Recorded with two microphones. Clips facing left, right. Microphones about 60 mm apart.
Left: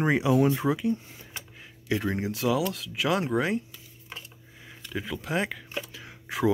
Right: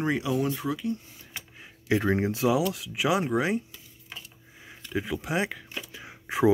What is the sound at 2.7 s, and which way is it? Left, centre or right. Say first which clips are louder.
Speech: right 1 dB; centre.